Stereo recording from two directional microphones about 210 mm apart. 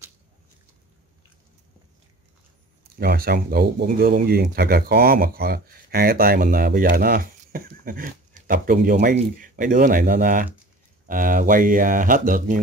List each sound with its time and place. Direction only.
3.0 s speech: 45° right (ahead or behind)